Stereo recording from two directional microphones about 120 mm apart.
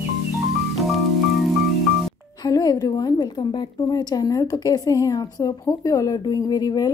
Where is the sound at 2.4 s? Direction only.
30° left (ahead or behind).